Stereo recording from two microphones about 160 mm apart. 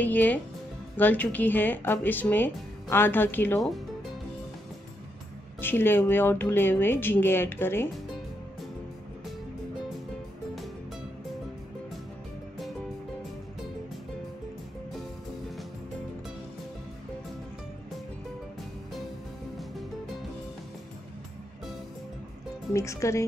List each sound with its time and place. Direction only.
0.0 s speech: 10° left (ahead or behind)
3.6 s music: centre (ahead or behind)
5.6 s speech: 15° left (ahead or behind)
22.7 s speech: 20° left (ahead or behind)